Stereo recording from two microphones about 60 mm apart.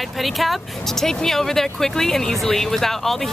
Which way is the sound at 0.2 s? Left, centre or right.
Centre.